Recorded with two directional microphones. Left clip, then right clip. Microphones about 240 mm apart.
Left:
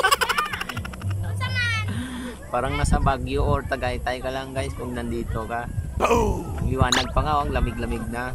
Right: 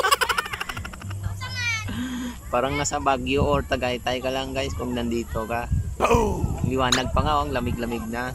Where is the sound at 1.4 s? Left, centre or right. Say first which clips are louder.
Left 2 dB; left.